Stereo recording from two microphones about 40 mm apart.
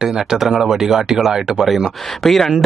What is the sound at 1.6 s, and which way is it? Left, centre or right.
Speech, centre.